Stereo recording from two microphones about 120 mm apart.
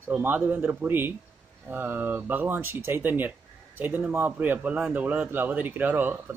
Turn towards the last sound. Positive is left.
turn(degrees=-15)  # may be behind; listen again after turning